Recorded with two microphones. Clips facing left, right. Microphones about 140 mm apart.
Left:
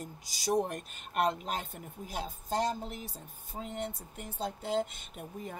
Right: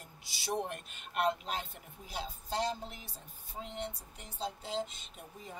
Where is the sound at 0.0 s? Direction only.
40° left (ahead or behind).